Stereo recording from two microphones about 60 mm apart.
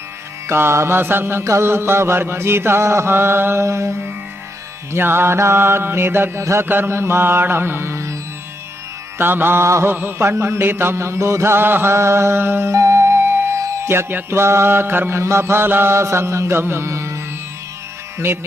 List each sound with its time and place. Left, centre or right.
0.5 s music: right
1.4 s mantra: right
3.6 s mantra: right
4.9 s music: right
6.4 s mantra: right
6.7 s music: right
9.2 s music: right
9.7 s mantra: right
9.9 s music: right
10.4 s mantra: right